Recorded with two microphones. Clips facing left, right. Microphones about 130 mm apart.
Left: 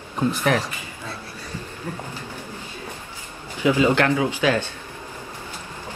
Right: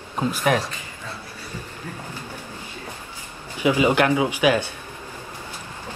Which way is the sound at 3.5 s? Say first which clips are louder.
Even; 15° right (ahead or behind).